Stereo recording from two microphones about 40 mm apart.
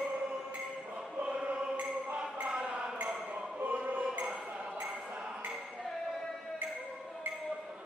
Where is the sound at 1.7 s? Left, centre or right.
Right.